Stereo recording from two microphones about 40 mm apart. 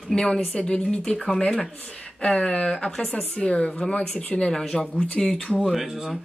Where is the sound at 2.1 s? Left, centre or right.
Centre.